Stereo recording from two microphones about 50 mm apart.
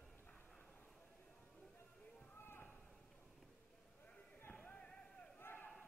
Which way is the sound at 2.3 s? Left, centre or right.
Left.